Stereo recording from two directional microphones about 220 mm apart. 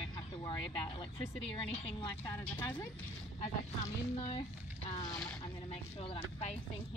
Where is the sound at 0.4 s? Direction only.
20° left (ahead or behind).